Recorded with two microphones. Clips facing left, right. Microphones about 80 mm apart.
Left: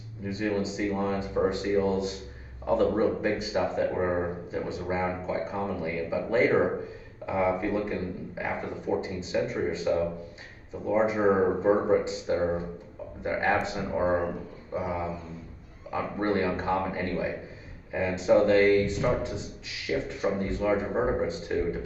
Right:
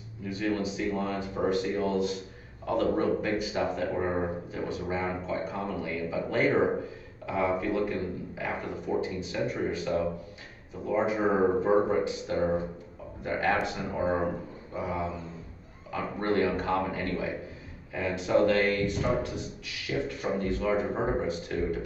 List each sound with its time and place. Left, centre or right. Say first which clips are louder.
0.2 s speech: left 1 dB; left